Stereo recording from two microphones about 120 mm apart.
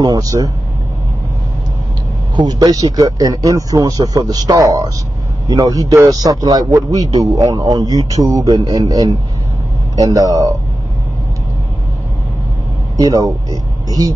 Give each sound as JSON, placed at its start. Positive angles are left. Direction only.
{"t": 0.0, "sound": "speech", "side_deg": -30}
{"t": 2.3, "sound": "speech", "side_deg": -35}
{"t": 12.9, "sound": "speech", "side_deg": -30}